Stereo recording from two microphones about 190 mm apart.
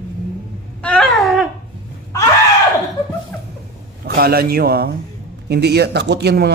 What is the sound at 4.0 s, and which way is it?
A man's voice, 55° right (ahead or behind).